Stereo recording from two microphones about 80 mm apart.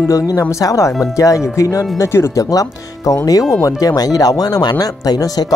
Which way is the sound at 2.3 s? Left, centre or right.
Left.